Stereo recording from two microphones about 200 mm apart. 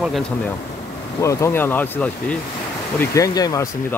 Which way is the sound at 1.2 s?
15° left (ahead or behind).